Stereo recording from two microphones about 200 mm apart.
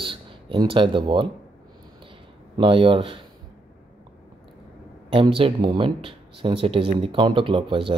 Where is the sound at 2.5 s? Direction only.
25° right (ahead or behind).